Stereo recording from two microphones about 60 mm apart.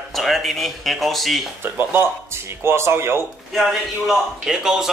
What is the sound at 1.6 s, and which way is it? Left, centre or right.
Speech, right.